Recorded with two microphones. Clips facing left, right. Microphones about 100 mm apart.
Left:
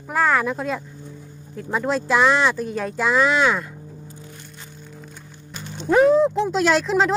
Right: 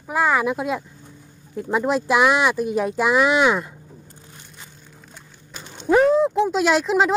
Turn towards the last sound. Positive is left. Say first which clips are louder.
# even
turn(degrees=-5)  # may be behind; listen again after turning